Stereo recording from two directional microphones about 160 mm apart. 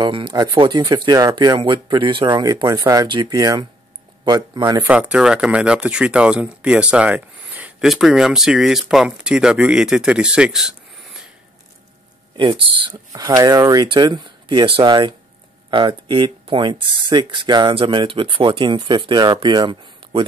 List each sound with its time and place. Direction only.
0.0 s speech: 30° right (ahead or behind)
4.8 s speech: 10° right (ahead or behind)
12.4 s speech: 35° right (ahead or behind)